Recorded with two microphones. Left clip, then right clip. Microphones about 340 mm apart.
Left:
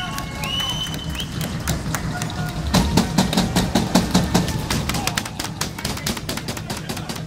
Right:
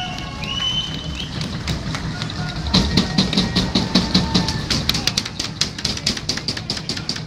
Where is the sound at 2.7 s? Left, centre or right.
Left.